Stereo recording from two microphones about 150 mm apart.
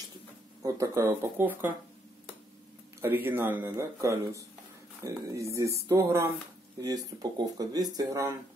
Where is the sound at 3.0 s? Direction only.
15° right (ahead or behind).